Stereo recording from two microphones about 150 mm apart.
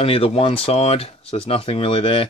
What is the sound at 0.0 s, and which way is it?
Speech, 40° left (ahead or behind).